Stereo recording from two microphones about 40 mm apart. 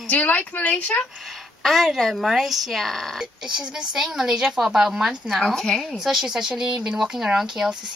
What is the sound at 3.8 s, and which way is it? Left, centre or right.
A child's voice, right.